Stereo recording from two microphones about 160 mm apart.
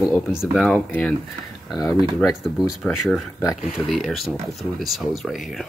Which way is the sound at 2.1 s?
Centre (ahead or behind).